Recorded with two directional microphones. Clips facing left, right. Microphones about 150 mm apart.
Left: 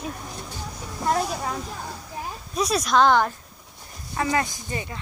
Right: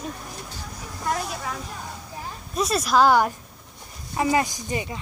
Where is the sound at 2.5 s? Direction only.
Centre (ahead or behind).